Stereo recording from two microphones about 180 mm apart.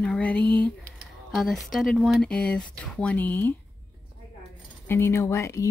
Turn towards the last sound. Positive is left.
turn(degrees=15)  # may be behind; listen again after turning